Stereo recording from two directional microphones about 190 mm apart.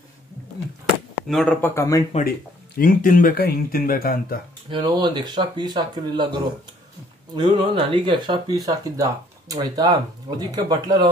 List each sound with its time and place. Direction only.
1.3 s speech: 5° left (ahead or behind)
2.8 s speech: 45° left (ahead or behind)
4.6 s speech: 25° right (ahead or behind)